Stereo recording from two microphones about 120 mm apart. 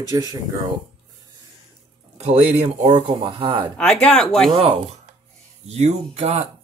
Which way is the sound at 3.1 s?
65° right (ahead or behind).